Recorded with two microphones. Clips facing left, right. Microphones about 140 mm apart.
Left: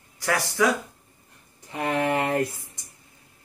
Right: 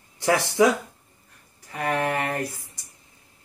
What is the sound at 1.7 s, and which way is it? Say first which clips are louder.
Speech: left 1 dB; 20° left (ahead or behind).